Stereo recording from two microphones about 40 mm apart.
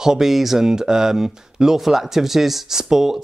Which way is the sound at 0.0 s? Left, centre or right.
Centre.